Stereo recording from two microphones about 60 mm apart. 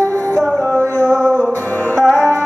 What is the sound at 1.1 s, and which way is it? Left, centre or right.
Music, centre.